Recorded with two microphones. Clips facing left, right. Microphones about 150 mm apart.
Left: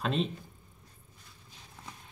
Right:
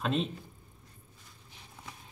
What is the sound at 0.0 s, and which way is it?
Speech, centre (ahead or behind).